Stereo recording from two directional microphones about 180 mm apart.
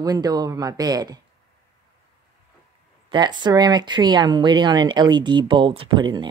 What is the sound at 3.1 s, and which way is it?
Speech, 25° right (ahead or behind).